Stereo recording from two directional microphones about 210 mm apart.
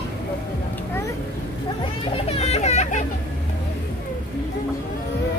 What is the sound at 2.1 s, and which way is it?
Children playing, 30° left (ahead or behind).